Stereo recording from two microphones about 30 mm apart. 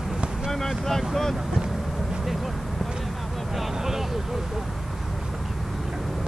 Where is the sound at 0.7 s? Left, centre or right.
Centre.